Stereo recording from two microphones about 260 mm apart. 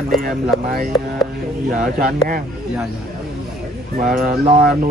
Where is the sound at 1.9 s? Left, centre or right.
Right.